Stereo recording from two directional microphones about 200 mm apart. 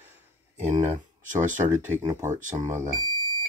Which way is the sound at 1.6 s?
15° right (ahead or behind).